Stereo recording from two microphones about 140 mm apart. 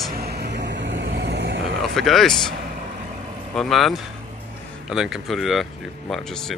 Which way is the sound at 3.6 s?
Centre (ahead or behind).